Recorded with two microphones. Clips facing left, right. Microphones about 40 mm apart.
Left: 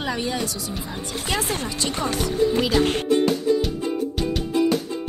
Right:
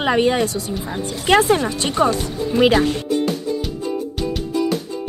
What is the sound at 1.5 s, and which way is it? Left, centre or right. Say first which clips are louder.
Speech: right 8 dB; right.